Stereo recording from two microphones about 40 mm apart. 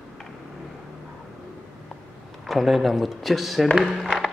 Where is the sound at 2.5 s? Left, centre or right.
Centre.